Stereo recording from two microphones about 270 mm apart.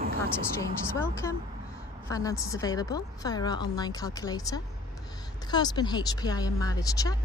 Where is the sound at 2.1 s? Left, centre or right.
Centre.